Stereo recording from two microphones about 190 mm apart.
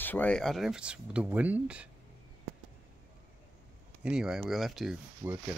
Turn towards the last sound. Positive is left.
turn(degrees=-10)  # may be behind; listen again after turning